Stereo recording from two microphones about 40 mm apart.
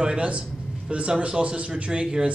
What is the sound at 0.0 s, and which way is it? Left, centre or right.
A man's voice, right.